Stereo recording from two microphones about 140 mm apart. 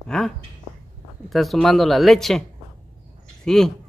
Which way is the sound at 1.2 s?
Centre (ahead or behind).